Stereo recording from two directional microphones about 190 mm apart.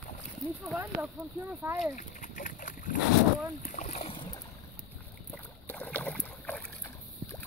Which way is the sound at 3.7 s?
40° left (ahead or behind).